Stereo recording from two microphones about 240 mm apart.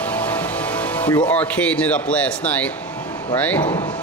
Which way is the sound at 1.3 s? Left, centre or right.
Centre.